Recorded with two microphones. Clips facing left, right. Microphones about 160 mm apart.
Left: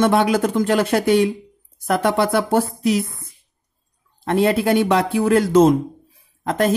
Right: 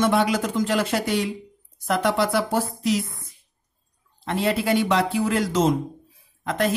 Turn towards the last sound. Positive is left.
turn(degrees=45)  # may be behind; listen again after turning